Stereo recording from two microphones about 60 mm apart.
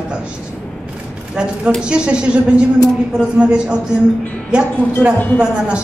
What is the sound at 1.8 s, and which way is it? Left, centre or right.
A woman's voice, centre.